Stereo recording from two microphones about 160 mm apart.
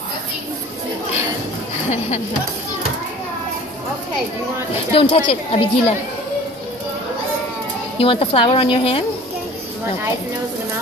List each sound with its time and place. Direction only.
1.9 s speech: 45° left (ahead or behind)
4.9 s a woman's voice: 35° left (ahead or behind)
8.0 s a woman's voice: 35° left (ahead or behind)